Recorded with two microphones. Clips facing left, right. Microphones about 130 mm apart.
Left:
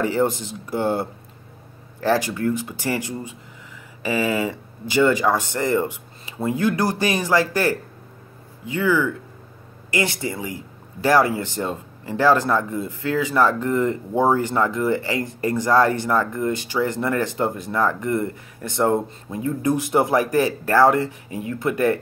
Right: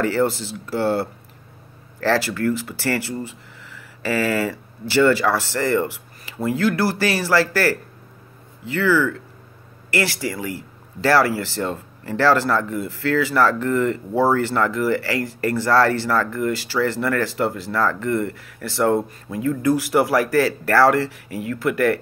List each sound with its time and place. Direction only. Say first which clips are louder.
0.0 s speech: right 1 dB; 20° left (ahead or behind)